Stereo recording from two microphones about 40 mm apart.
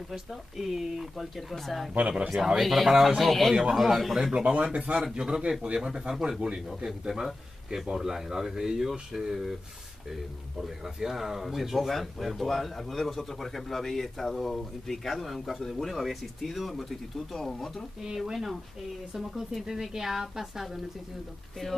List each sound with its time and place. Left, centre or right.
0.1 s a man's voice: centre
2.0 s speech: right
2.2 s a man's voice: centre
4.3 s speech: right
5.0 s a man's voice: centre
10.8 s speech: centre
18.0 s a man's voice: centre
19.6 s a man's voice: centre
21.6 s speech: centre